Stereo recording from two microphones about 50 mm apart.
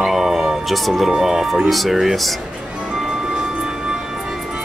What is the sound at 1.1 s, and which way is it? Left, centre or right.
Speech, centre.